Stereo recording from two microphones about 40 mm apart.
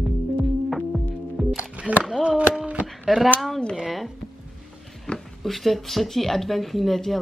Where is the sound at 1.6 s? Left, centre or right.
Right.